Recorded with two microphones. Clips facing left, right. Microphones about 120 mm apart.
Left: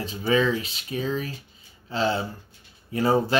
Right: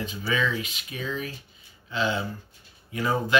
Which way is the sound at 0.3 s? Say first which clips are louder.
Left 6 dB; 35° left (ahead or behind).